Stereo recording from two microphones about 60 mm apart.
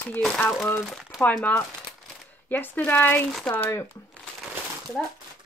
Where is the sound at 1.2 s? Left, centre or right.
Left.